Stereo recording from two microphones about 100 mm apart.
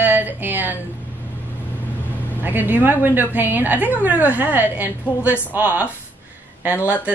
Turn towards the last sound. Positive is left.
turn(degrees=-15)  # may be behind; listen again after turning